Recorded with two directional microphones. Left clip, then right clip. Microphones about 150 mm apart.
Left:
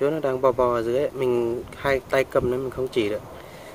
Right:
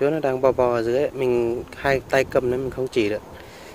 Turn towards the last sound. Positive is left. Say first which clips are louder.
# right 2 dB
turn(degrees=-30)  # may be behind; listen again after turning